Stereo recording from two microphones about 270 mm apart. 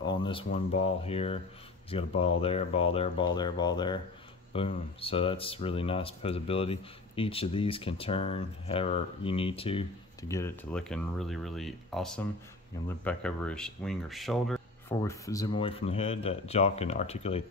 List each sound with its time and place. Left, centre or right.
0.1 s speech: centre
15.0 s speech: centre